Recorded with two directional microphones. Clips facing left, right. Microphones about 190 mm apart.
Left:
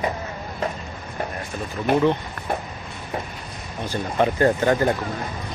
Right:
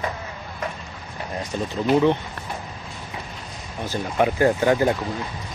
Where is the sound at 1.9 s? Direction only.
55° left (ahead or behind).